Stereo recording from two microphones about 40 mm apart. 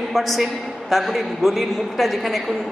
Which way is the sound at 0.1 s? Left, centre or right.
Centre.